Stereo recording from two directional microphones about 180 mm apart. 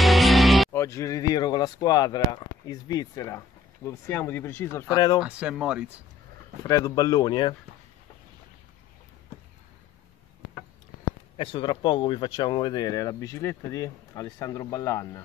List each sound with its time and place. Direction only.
0.0 s music: centre (ahead or behind)
0.7 s speech: 15° left (ahead or behind)
5.2 s speech: 5° right (ahead or behind)
6.6 s speech: 20° left (ahead or behind)
11.3 s speech: 30° left (ahead or behind)